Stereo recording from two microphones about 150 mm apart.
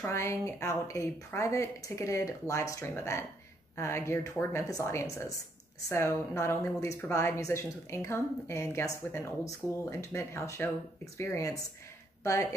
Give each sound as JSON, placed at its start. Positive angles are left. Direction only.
{"t": 0.0, "sound": "a woman's voice", "side_deg": 20}